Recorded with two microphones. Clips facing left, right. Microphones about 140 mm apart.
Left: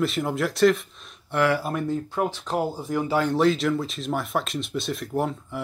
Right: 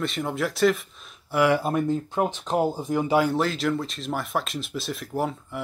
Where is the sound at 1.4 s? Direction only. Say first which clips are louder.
Right 3 dB; 20° right (ahead or behind).